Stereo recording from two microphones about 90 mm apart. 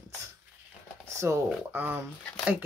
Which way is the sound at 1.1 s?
30° right (ahead or behind).